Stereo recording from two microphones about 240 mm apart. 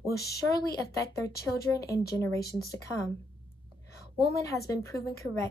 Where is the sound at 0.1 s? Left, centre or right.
Left.